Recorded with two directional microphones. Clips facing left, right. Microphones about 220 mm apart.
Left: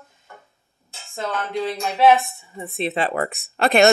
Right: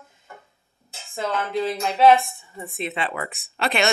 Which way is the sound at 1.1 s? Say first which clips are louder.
Right 1 dB; 5° right (ahead or behind).